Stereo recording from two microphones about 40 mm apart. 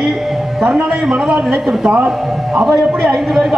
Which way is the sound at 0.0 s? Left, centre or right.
Centre.